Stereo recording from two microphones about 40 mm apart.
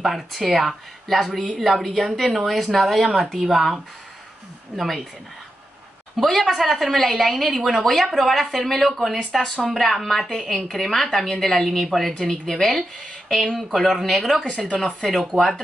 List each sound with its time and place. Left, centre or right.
0.0 s a woman's voice: centre
4.7 s a woman's voice: centre
6.1 s a woman's voice: centre
12.2 s a woman's voice: centre
14.4 s speech: left
15.3 s speech: centre